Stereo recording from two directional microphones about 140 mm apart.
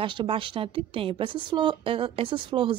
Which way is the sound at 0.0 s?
35° right (ahead or behind).